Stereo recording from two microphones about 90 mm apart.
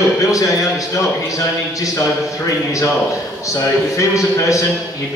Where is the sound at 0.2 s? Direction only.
40° left (ahead or behind).